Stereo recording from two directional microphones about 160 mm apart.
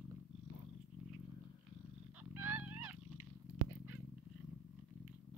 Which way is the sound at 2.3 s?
10° right (ahead or behind).